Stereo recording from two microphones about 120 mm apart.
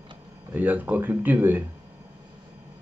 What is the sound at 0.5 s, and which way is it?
A man's voice, 15° right (ahead or behind).